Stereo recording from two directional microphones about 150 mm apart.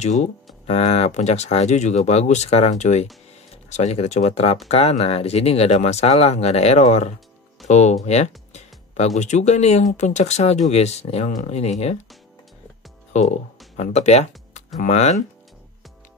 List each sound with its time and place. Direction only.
0.7 s speech: 45° left (ahead or behind)
13.1 s speech: 50° left (ahead or behind)